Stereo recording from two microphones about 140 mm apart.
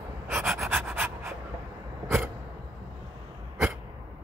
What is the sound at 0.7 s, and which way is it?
Pant, 15° right (ahead or behind).